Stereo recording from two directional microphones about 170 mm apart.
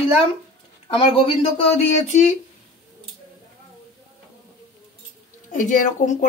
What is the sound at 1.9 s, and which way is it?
Speech, 45° left (ahead or behind).